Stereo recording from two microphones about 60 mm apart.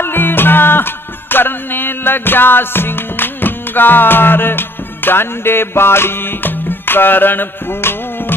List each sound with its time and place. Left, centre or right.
0.0 s music: left